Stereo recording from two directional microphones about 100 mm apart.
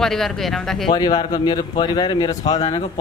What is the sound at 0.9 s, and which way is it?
Speech, 50° left (ahead or behind).